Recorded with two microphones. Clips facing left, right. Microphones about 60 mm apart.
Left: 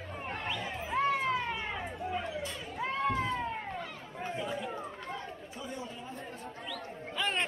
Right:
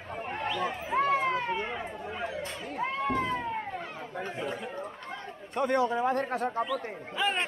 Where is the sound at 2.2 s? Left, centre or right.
Right.